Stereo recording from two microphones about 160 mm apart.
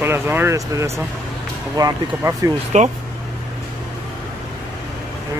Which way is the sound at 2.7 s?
45° right (ahead or behind).